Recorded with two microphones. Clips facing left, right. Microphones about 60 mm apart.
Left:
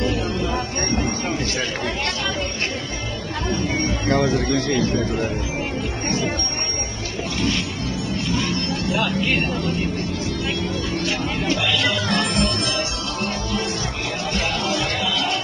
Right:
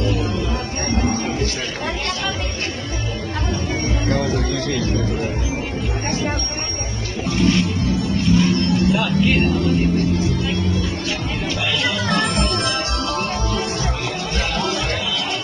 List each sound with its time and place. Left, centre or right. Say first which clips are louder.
4.1 s speech: left 3 dB; left
8.4 s music: right 6 dB; centre
10.4 s music: right 3 dB; left
12.1 s music: right 1 dB; right